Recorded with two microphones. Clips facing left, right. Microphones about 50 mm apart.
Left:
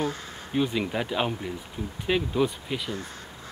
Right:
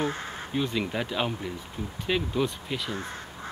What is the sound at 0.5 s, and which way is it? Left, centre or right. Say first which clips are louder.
Speech: left 3 dB; centre.